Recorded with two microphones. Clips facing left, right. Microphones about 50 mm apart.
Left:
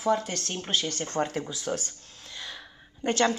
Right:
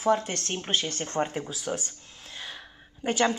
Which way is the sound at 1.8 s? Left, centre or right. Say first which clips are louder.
Right 1 dB; right.